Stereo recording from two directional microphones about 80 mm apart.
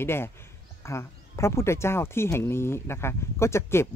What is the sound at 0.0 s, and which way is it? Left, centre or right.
Speech, left.